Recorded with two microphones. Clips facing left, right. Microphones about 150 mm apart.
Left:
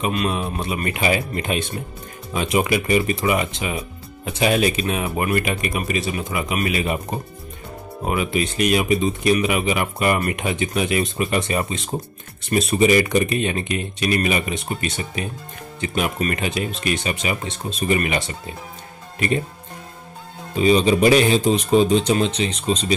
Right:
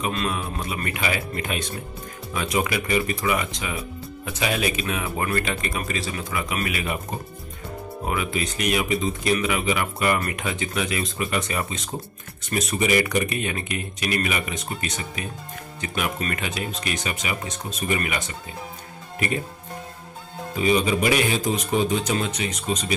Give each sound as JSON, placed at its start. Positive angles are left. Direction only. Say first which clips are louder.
{"t": 0.0, "sound": "speech", "louder": "left 4 dB", "side_deg": 20}
{"t": 20.5, "sound": "speech", "louder": "left 5 dB", "side_deg": 25}